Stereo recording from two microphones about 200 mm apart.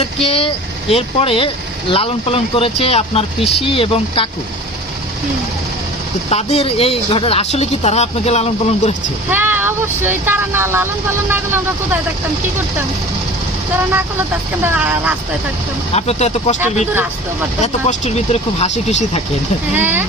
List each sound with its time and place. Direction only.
0.0 s speech: 30° left (ahead or behind)
6.3 s speech: 30° left (ahead or behind)
9.3 s speech: 10° right (ahead or behind)
14.6 s speech: 10° right (ahead or behind)
15.9 s speech: 30° left (ahead or behind)
17.6 s speech: 35° left (ahead or behind)
19.8 s speech: 10° right (ahead or behind)